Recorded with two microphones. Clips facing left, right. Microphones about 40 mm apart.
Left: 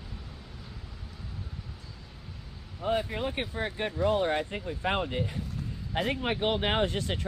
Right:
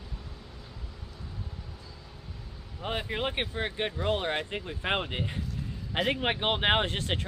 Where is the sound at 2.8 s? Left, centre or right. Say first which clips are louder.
Left 3 dB; right.